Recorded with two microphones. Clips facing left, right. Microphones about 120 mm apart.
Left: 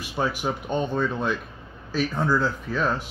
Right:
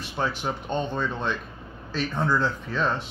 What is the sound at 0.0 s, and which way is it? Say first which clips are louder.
Speech: left 2 dB; 10° left (ahead or behind).